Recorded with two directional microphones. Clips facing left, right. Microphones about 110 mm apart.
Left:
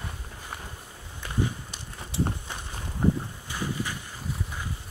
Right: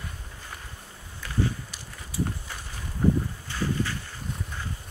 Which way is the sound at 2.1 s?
25° left (ahead or behind).